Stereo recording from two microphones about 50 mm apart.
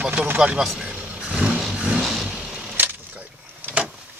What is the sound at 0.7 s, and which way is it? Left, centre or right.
Vehicle, centre.